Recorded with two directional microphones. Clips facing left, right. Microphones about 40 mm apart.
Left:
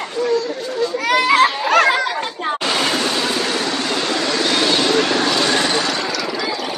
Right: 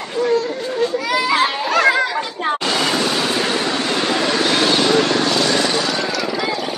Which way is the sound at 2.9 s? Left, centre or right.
Centre.